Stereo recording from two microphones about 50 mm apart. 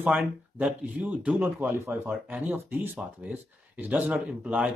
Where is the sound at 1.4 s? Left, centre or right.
Right.